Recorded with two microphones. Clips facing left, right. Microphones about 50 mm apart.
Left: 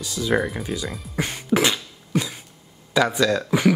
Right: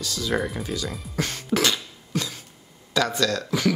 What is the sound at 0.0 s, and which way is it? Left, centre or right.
Speech, centre.